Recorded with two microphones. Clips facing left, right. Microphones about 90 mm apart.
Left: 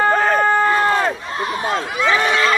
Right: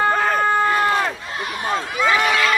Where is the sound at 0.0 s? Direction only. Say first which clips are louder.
Left 3 dB; 40° left (ahead or behind).